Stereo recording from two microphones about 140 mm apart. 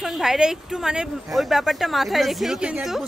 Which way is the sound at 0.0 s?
Centre (ahead or behind).